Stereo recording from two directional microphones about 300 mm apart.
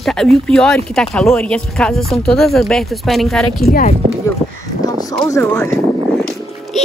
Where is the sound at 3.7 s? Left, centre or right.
Left.